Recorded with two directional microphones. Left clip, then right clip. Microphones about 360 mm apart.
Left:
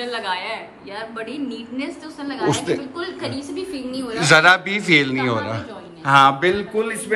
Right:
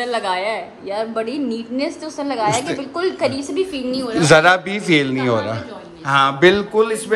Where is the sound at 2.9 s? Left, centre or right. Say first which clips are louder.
Right 8 dB; centre.